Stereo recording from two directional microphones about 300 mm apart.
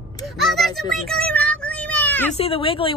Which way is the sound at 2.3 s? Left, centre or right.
Centre.